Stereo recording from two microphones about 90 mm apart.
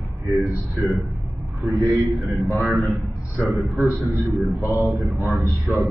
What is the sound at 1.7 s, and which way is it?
Speech, 35° right (ahead or behind).